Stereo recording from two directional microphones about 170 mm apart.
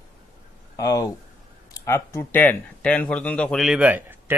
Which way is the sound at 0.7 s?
20° left (ahead or behind).